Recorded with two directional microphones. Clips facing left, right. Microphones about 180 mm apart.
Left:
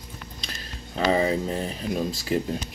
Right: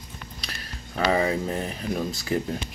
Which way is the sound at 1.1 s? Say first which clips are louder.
Left 1 dB; 25° left (ahead or behind).